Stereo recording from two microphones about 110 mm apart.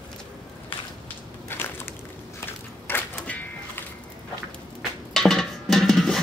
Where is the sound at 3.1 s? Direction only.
10° left (ahead or behind).